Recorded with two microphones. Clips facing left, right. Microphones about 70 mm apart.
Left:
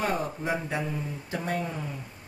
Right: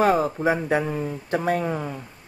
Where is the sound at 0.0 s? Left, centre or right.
Right.